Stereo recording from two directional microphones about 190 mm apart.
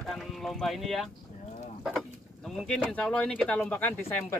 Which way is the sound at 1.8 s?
Centre (ahead or behind).